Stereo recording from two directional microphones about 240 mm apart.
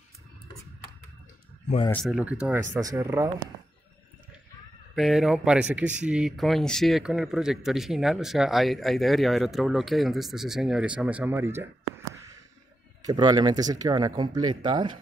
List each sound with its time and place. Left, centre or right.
1.9 s speech: centre
4.9 s speech: centre